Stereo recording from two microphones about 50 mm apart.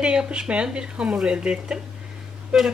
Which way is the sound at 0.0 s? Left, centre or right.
Centre.